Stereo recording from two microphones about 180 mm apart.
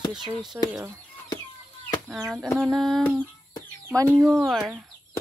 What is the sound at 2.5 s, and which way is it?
Speech, centre (ahead or behind).